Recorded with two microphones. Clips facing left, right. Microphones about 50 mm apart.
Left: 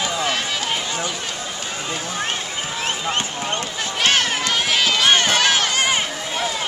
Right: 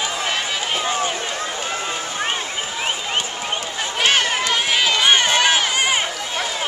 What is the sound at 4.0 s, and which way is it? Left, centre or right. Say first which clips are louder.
Run: right 1 dB; centre.